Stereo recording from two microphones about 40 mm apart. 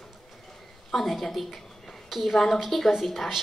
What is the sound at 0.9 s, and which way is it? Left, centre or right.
Speech, centre.